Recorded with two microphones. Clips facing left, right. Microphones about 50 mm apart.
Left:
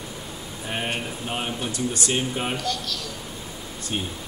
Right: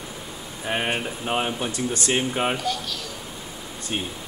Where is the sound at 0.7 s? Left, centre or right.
Right.